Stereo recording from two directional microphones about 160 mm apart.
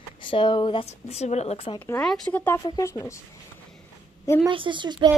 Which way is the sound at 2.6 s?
25° left (ahead or behind).